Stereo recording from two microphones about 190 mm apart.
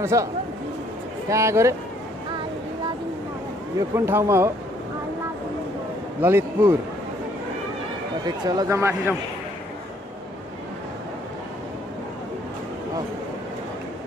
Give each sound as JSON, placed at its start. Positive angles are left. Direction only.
{"t": 0.0, "sound": "speech", "side_deg": -15}
{"t": 1.3, "sound": "speech", "side_deg": -15}
{"t": 3.7, "sound": "speech", "side_deg": -15}
{"t": 6.2, "sound": "speech", "side_deg": -10}
{"t": 8.3, "sound": "speech", "side_deg": -20}